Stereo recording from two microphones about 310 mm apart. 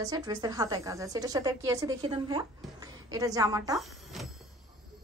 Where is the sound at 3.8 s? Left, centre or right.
Centre.